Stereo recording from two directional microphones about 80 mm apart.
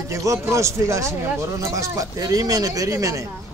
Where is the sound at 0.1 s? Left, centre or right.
Right.